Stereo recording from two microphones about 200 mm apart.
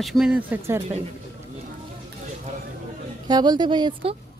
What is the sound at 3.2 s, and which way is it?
Speech, 20° right (ahead or behind).